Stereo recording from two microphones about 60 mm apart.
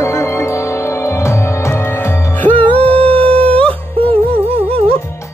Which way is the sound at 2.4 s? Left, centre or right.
Left.